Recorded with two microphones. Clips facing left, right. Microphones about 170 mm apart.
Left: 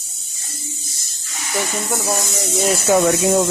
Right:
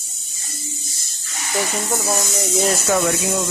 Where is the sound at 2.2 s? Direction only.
Centre (ahead or behind).